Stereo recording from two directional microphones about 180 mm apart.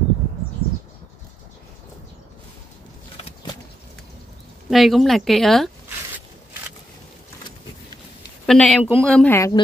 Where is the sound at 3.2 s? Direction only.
30° left (ahead or behind).